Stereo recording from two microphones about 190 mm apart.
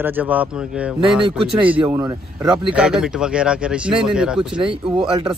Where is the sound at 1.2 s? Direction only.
25° right (ahead or behind).